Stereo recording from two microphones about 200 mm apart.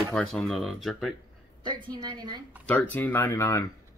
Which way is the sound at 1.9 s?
20° right (ahead or behind).